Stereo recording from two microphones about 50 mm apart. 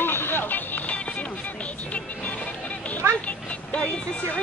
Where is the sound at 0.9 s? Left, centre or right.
Left.